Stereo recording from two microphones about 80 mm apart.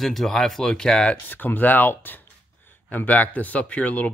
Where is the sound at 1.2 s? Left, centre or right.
Left.